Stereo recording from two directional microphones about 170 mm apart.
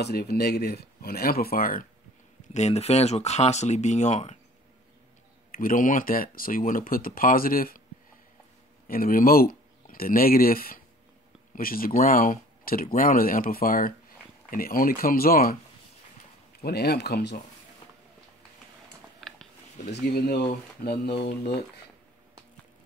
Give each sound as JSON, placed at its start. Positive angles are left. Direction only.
{"t": 0.0, "sound": "speech", "side_deg": 70}
{"t": 2.5, "sound": "speech", "side_deg": 40}
{"t": 5.5, "sound": "speech", "side_deg": 55}
{"t": 8.8, "sound": "speech", "side_deg": 55}
{"t": 16.6, "sound": "speech", "side_deg": 70}
{"t": 19.2, "sound": "a sound", "side_deg": 0}
{"t": 19.9, "sound": "speech", "side_deg": 65}